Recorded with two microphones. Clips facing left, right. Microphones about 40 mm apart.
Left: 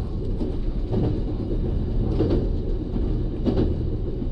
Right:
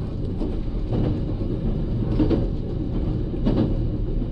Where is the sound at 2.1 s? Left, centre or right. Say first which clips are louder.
Right 2 dB; centre.